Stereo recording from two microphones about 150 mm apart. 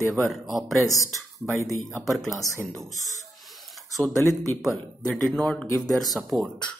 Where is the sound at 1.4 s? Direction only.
20° right (ahead or behind).